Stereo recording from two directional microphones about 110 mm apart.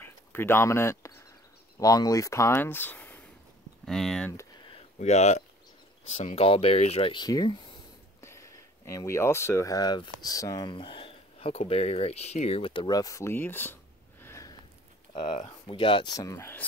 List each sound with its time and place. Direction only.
0.0 s speech: 20° left (ahead or behind)
3.8 s speech: 5° left (ahead or behind)
5.0 s speech: 90° left
6.1 s speech: 80° left
7.1 s speech: 40° left (ahead or behind)
8.2 s speech: 25° left (ahead or behind)
14.2 s a sound: 25° left (ahead or behind)
15.4 s speech: 50° left (ahead or behind)
16.2 s speech: 25° left (ahead or behind)